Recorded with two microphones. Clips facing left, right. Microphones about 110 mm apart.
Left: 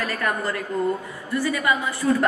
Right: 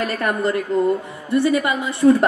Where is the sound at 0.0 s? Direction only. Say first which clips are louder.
Right 5 dB; 20° right (ahead or behind).